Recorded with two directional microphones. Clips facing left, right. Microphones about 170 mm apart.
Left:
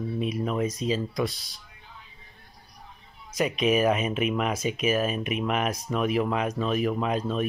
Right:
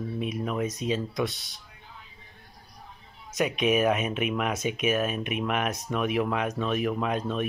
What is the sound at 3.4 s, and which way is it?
Speech, centre (ahead or behind).